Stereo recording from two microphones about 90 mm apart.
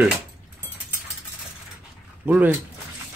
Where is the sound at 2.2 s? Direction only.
20° right (ahead or behind).